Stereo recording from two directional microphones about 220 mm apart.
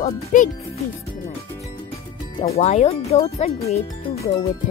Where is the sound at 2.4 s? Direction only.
30° left (ahead or behind).